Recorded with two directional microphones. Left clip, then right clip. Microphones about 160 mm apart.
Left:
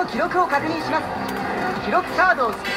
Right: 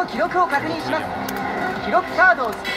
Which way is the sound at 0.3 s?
25° right (ahead or behind).